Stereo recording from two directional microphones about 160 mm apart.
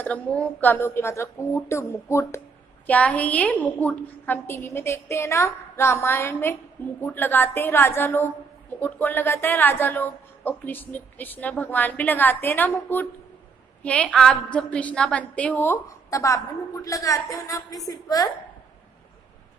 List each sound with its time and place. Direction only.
0.0 s a woman's voice: 10° left (ahead or behind)